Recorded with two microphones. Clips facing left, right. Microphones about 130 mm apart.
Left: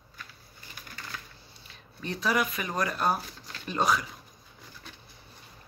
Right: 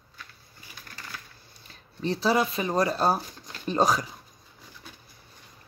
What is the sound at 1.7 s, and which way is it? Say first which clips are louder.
Speech: right 7 dB; 30° right (ahead or behind).